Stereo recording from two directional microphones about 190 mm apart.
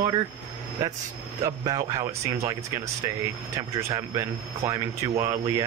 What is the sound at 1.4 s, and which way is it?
Speech, 20° right (ahead or behind).